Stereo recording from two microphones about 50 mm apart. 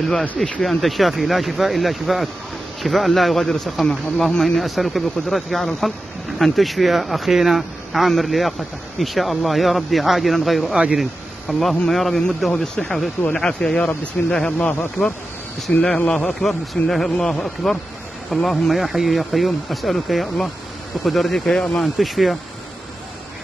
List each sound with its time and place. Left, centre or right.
0.4 s speech: centre
10.7 s speech: centre
11.0 s speech: centre
12.4 s speech: centre
14.2 s speech: left
15.7 s speech: centre